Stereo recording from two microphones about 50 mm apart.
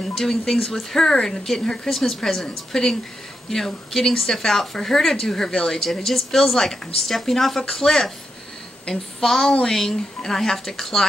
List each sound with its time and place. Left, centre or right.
0.0 s speech: centre